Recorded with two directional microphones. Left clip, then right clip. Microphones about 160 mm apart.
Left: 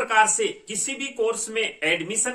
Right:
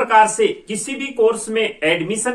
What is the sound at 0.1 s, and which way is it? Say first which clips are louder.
Speech: right 6 dB; 20° left (ahead or behind).